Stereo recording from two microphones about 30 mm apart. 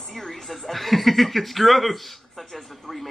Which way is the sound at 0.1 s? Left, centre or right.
Centre.